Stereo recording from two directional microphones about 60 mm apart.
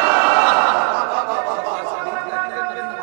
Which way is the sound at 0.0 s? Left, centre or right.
Right.